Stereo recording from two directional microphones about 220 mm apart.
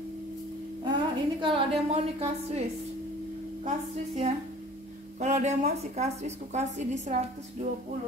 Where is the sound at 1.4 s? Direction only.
25° right (ahead or behind).